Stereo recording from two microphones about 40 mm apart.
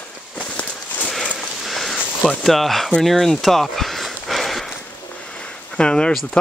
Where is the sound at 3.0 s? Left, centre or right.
Centre.